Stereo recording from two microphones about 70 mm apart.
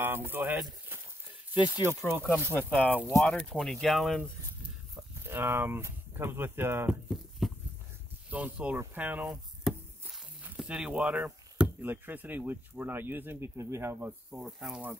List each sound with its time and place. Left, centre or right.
0.0 s speech: right
2.5 s speech: left; by 4.2 s centre
5.2 s speech: right
7.4 s a sound: centre
8.3 s speech: right
9.7 s a sound: centre
10.6 s speech: centre
11.8 s speech: right
13.9 s speech: right
14.4 s speech: centre